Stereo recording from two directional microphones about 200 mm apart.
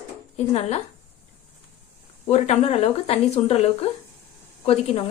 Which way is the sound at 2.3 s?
30° left (ahead or behind).